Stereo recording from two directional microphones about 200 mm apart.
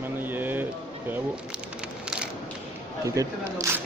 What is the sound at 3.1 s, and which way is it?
Speech, 15° right (ahead or behind).